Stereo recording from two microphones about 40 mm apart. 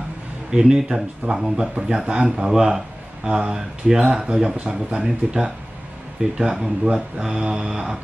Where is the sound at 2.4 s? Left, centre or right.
Centre.